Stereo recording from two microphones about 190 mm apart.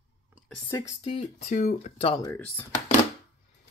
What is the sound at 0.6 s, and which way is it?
Speech, 15° left (ahead or behind).